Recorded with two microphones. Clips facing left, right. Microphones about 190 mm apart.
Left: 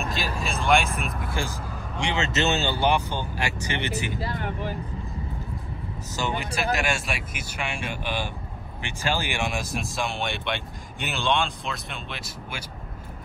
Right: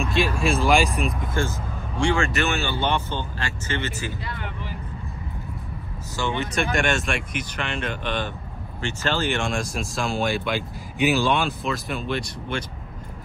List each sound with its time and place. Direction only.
0.1 s speech: centre (ahead or behind)
2.0 s speech: 20° left (ahead or behind)
4.2 s speech: 45° left (ahead or behind)
6.1 s speech: 20° left (ahead or behind)
6.5 s speech: 5° left (ahead or behind)